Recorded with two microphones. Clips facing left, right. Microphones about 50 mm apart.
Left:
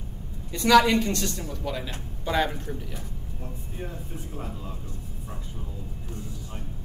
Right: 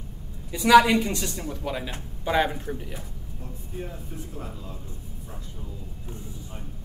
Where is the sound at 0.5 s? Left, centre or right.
Centre.